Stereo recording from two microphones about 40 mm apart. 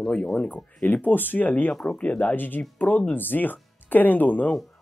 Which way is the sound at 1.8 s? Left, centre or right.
Left.